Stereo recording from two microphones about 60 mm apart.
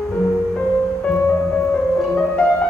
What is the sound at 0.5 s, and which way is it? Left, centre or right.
Music, centre.